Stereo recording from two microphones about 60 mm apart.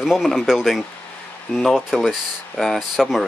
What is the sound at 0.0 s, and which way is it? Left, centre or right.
Speech, centre.